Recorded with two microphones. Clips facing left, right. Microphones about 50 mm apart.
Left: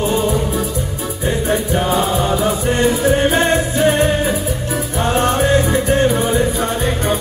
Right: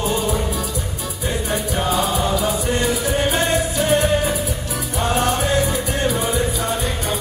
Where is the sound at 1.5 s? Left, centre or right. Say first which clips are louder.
Left 4 dB; left.